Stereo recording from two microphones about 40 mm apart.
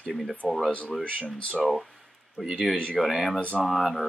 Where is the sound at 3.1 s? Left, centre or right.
Centre.